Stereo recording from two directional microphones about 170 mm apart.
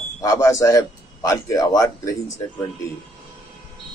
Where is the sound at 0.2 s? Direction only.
20° left (ahead or behind).